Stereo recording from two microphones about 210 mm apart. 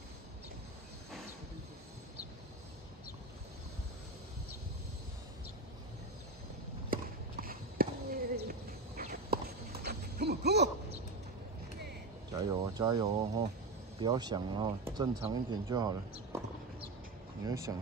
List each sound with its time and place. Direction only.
6.9 s horse: 45° right (ahead or behind)
9.8 s a sound: 50° right (ahead or behind)
12.3 s speech: 20° right (ahead or behind)
17.5 s speech: 15° right (ahead or behind)